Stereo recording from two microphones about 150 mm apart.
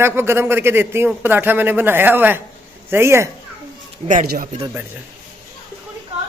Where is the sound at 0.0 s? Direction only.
15° right (ahead or behind).